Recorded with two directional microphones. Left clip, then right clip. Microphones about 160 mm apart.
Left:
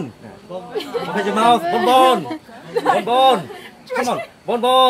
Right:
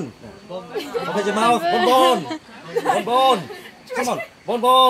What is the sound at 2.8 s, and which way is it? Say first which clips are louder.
Speech: left 3 dB; 15° right (ahead or behind).